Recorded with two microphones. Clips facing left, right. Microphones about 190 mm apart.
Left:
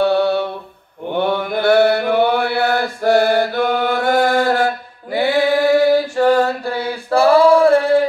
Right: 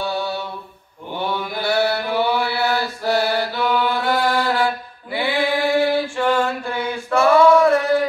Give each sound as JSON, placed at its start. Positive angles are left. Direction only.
{"t": 0.0, "sound": "mantra", "side_deg": 65}